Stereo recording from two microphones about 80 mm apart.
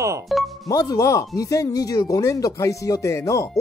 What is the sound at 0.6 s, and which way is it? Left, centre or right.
Speech, left.